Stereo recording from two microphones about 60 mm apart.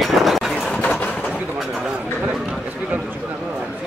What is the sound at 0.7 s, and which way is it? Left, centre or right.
Vehicle, left.